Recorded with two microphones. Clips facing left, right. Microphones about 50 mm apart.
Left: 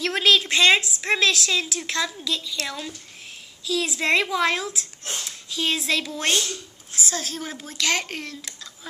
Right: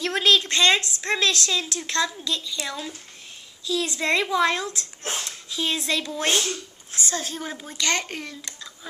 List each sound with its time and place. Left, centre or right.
0.0 s a woman's voice: centre
5.0 s speech: right
5.5 s a woman's voice: centre
6.3 s speech: right
7.0 s a woman's voice: centre